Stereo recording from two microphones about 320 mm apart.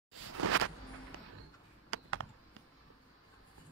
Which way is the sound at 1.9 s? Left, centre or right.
Right.